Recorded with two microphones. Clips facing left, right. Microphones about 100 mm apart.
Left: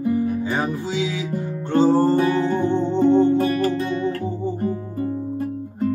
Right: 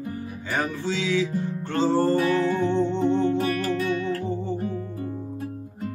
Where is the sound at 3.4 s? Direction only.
30° left (ahead or behind).